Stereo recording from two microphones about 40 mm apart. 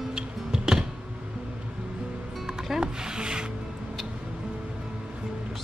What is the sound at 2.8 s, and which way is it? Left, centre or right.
Music, centre.